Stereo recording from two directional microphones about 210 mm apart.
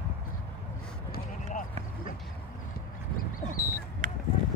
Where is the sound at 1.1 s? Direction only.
40° left (ahead or behind).